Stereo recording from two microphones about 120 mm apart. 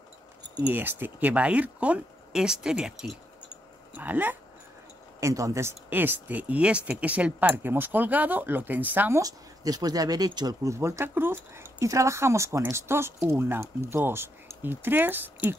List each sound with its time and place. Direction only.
0.7 s speech: 15° right (ahead or behind)
5.2 s speech: 25° right (ahead or behind)
9.2 s speech: 30° right (ahead or behind); by 15.5 s 15° right (ahead or behind)